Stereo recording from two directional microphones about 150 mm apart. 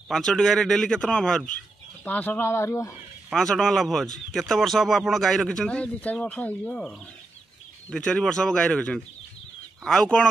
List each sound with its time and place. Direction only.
0.1 s a man's voice: 5° left (ahead or behind); by 2.9 s 20° left (ahead or behind)
3.3 s a man's voice: centre (ahead or behind)
7.9 s a man's voice: 5° left (ahead or behind)